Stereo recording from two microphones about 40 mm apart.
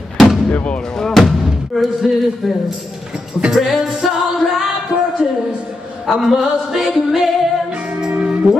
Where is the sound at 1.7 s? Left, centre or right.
Centre.